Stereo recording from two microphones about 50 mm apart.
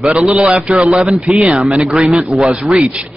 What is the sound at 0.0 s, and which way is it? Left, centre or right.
A man's voice, right.